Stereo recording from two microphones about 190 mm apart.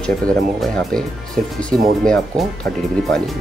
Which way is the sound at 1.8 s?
Centre (ahead or behind).